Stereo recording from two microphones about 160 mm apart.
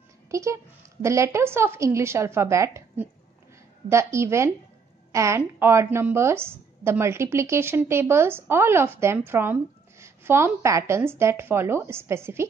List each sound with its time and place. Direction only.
0.3 s a woman's voice: 20° right (ahead or behind)